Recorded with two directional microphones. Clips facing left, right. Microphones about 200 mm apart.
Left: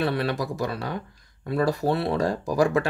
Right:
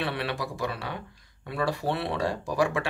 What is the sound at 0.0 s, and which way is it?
Speech, 40° left (ahead or behind).